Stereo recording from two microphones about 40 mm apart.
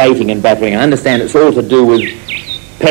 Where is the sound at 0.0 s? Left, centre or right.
Centre.